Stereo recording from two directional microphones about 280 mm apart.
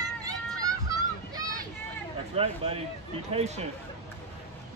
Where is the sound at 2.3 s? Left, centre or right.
Right.